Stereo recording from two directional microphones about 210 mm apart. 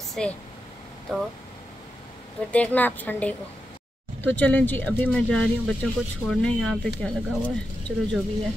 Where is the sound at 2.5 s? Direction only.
5° left (ahead or behind).